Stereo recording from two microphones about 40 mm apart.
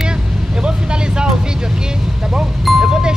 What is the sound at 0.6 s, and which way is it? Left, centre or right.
Vehicle, right.